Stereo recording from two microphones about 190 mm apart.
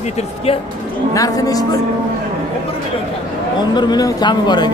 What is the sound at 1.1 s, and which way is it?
Speech, 20° left (ahead or behind).